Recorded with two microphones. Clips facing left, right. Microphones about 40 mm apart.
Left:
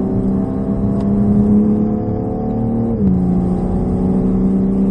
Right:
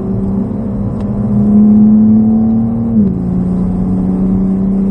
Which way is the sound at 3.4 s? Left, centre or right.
Left.